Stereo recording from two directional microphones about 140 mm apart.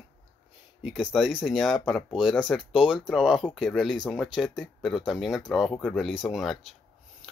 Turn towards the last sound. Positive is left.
turn(degrees=0)  # may be behind; listen again after turning